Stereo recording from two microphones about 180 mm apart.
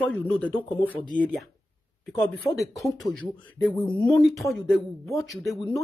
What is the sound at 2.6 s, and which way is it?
Speech, centre (ahead or behind).